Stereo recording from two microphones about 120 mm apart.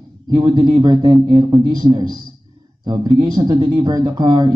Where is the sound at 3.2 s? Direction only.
35° right (ahead or behind).